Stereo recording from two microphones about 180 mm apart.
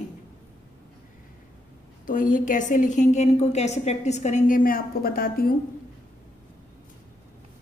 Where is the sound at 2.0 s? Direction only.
45° left (ahead or behind).